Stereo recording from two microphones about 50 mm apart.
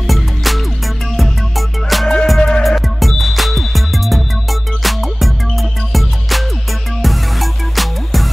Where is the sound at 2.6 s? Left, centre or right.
Centre.